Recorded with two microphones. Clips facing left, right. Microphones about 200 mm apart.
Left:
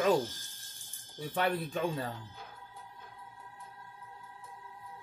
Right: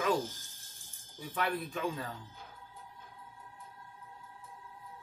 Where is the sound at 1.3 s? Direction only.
30° left (ahead or behind).